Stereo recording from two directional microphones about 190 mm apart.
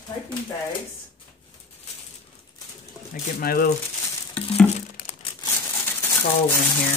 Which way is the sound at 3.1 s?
50° left (ahead or behind).